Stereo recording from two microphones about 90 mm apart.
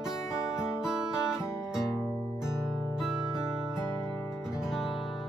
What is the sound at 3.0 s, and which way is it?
Music, 5° right (ahead or behind).